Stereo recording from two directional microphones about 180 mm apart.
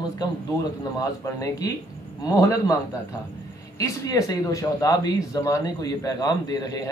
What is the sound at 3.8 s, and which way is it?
Speech, 20° left (ahead or behind).